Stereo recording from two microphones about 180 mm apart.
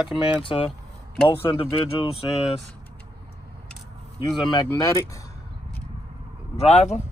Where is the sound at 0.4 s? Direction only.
30° left (ahead or behind).